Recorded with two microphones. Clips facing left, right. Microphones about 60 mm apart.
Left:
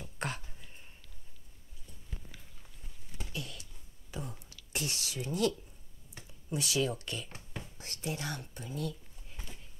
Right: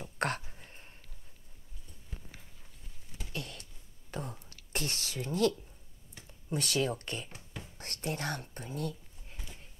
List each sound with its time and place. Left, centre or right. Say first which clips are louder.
0.2 s speech: right 5 dB; right
0.6 s a sound: right 2 dB; right
3.3 s a sound: right 2 dB; right
4.1 s whispering: right 2 dB; right
6.2 s speech: right 1 dB; right
7.2 s whispering: left 1 dB; centre
7.7 s speech: right 2 dB; right